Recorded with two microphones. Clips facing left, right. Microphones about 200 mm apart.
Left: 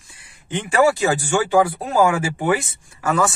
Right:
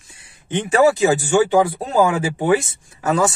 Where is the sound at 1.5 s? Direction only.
20° right (ahead or behind).